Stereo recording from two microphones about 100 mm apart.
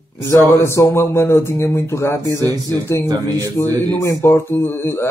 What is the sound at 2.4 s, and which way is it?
A man's voice, 40° right (ahead or behind).